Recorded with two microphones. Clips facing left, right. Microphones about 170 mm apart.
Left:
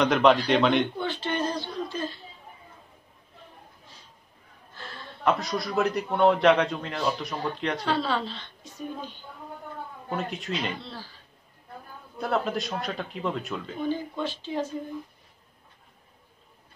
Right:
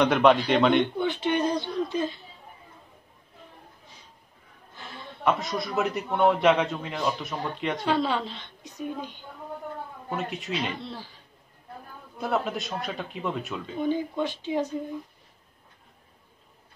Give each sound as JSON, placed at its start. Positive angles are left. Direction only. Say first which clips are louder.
{"t": 0.0, "sound": "a man's voice", "louder": "right 1 dB", "side_deg": 0}
{"t": 0.9, "sound": "a sound", "louder": "right 4 dB", "side_deg": -20}
{"t": 5.2, "sound": "a man's voice", "louder": "even", "side_deg": 0}
{"t": 8.0, "sound": "a woman's voice", "louder": "right 1 dB", "side_deg": -15}
{"t": 10.0, "sound": "speech", "louder": "left 1 dB", "side_deg": -5}
{"t": 12.2, "sound": "a man's voice", "louder": "left 1 dB", "side_deg": 0}
{"t": 13.8, "sound": "a woman's voice", "louder": "right 3 dB", "side_deg": -15}